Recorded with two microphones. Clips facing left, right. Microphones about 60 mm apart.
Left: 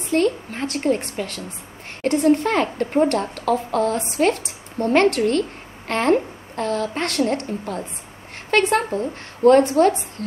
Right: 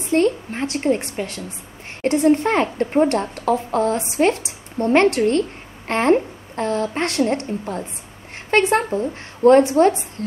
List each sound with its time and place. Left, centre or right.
0.1 s a woman's voice: right
9.4 s a woman's voice: left